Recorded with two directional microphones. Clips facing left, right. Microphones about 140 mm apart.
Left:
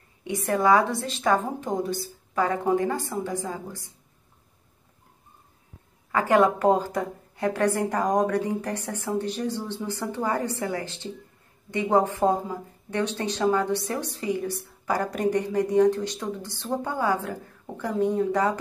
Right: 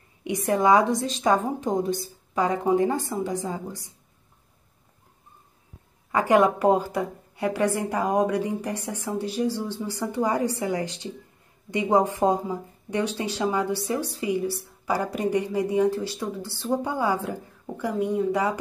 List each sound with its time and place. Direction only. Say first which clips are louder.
0.5 s a woman's voice: right 1 dB; 15° right (ahead or behind)
6.1 s speech: right 1 dB; 15° right (ahead or behind)